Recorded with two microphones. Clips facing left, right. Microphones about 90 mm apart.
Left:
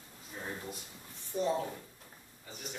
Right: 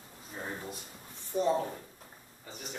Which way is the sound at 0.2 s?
25° right (ahead or behind).